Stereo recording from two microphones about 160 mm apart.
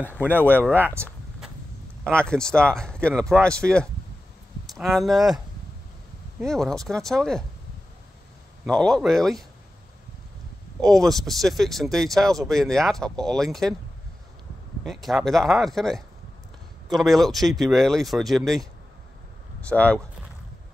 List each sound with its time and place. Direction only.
0.2 s speech: 10° right (ahead or behind)
2.0 s speech: 5° left (ahead or behind)
6.4 s speech: centre (ahead or behind)
8.6 s speech: 5° left (ahead or behind)
10.8 s speech: centre (ahead or behind)
14.9 s speech: centre (ahead or behind)
19.7 s speech: 10° left (ahead or behind)